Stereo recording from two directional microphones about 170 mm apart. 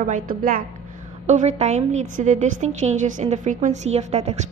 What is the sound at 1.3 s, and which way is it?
A woman's voice, 40° right (ahead or behind).